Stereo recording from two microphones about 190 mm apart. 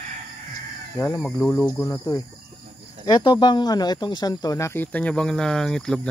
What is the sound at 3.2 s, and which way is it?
Speech, 25° left (ahead or behind).